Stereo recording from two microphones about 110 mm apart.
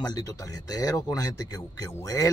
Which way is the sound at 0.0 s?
35° left (ahead or behind).